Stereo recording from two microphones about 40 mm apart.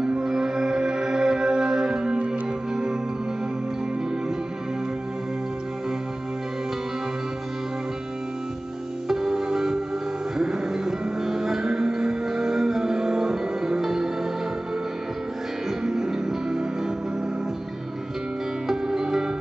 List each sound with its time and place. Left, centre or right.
0.2 s music: centre
9.0 s music: centre
15.8 s music: centre
18.7 s music: centre